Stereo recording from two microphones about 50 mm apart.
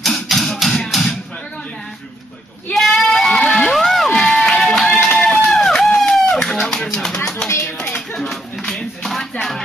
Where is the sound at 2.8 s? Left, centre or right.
Centre.